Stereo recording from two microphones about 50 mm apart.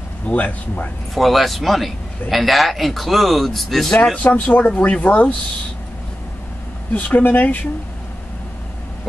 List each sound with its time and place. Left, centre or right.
0.3 s speech: centre
1.1 s a man's voice: centre
3.9 s speech: centre
4.2 s speech: left
6.9 s speech: left